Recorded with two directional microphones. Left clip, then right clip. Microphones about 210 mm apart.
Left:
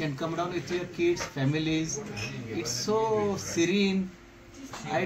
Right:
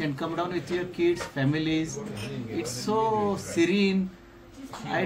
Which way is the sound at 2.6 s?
25° right (ahead or behind).